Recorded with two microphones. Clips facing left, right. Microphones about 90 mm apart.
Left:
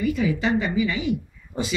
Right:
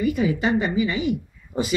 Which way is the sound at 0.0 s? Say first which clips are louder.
Right 1 dB; 50° right (ahead or behind).